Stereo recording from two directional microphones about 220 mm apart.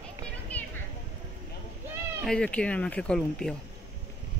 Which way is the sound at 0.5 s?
5° left (ahead or behind).